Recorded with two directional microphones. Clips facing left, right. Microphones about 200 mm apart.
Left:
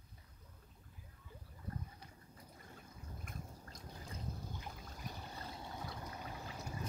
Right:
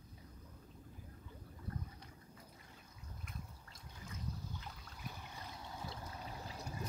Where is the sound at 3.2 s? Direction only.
40° left (ahead or behind); by 5.7 s 25° left (ahead or behind).